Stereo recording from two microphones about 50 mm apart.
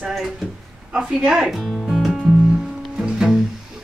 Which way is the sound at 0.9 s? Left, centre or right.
Centre.